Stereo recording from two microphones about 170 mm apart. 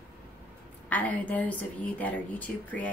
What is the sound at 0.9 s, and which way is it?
A woman's voice, 10° left (ahead or behind).